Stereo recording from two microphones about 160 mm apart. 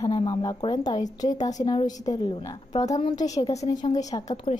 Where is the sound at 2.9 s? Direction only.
35° left (ahead or behind).